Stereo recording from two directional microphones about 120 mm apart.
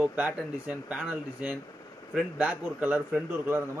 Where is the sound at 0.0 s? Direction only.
15° right (ahead or behind).